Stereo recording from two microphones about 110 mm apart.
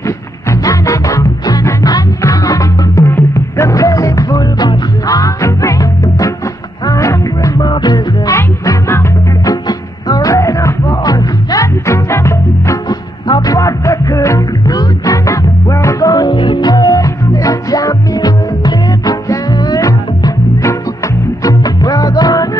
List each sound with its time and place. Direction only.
0.5 s music: 30° left (ahead or behind)
8.4 s music: 25° left (ahead or behind)